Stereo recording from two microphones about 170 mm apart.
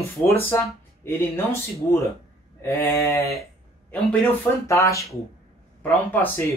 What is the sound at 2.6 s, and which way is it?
Speech, 15° left (ahead or behind).